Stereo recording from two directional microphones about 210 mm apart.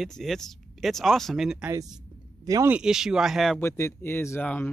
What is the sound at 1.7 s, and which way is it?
Speech, 15° right (ahead or behind).